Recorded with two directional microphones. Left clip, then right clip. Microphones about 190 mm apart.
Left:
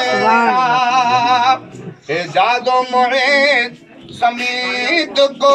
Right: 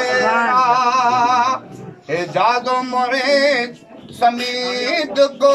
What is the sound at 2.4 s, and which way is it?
Music, 30° right (ahead or behind).